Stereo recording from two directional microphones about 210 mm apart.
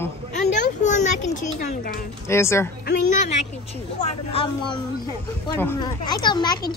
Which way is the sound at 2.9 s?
35° left (ahead or behind).